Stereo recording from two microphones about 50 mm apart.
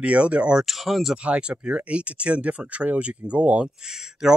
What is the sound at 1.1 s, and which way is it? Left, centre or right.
Speech, right.